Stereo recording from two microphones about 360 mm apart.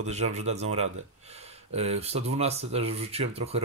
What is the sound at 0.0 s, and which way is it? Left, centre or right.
Speech, centre.